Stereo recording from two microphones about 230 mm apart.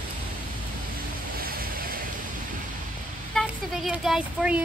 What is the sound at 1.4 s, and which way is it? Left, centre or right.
Waves, right.